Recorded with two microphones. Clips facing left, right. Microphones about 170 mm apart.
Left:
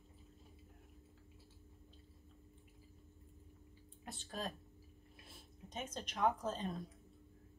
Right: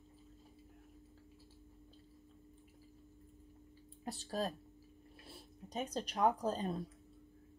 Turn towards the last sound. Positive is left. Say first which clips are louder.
# right 3 dB
turn(degrees=-35)  # may be behind; listen again after turning